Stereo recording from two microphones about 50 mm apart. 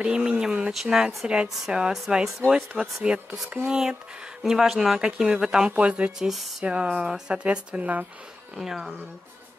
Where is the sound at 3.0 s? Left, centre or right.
Centre.